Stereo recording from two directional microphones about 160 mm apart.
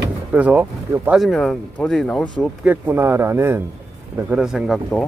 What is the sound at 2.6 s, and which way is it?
Speech, 10° right (ahead or behind).